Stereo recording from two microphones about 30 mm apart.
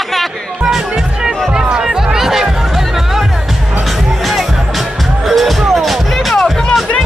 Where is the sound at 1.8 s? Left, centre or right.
Centre.